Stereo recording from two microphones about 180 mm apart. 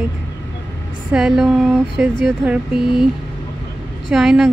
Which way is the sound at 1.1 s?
5° right (ahead or behind).